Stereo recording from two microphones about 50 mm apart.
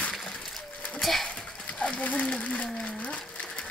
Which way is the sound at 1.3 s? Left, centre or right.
Left.